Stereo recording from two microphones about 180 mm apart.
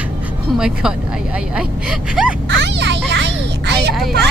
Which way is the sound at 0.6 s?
5° right (ahead or behind).